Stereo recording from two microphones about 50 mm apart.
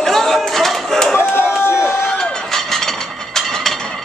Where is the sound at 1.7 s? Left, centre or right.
Left.